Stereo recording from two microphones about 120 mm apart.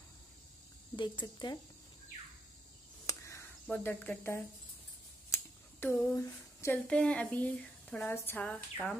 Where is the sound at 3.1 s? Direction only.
25° left (ahead or behind).